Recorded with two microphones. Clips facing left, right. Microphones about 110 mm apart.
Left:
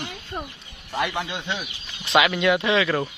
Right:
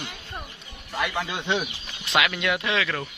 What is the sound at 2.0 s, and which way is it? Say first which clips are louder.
Speech: left 5 dB; centre (ahead or behind).